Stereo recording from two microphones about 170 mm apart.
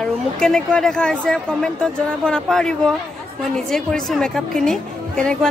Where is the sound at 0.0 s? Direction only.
5° left (ahead or behind).